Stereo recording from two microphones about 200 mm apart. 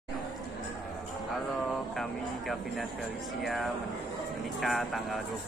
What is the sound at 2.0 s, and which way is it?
Vehicle, centre (ahead or behind).